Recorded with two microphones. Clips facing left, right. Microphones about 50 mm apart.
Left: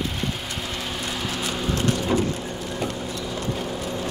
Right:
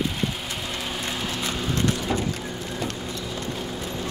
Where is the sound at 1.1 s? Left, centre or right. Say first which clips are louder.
Left 1 dB; centre.